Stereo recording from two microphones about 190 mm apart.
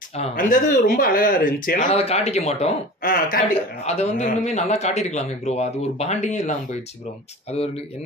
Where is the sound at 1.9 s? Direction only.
35° left (ahead or behind).